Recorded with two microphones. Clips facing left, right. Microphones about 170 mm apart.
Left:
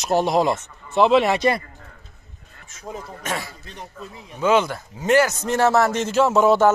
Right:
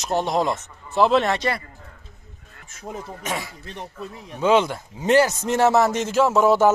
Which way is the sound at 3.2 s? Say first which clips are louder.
Left 1 dB; 10° right (ahead or behind).